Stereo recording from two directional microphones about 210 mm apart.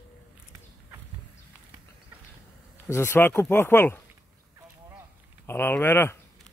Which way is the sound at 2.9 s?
10° left (ahead or behind).